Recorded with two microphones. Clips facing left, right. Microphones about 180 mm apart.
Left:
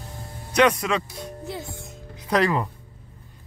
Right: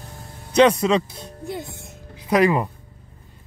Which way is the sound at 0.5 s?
25° right (ahead or behind).